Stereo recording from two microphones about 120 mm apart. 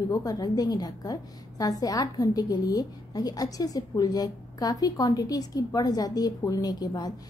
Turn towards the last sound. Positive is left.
turn(degrees=35)  # may be behind; listen again after turning